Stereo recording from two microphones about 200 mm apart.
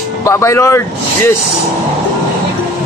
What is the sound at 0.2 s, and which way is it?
Speech, 15° left (ahead or behind).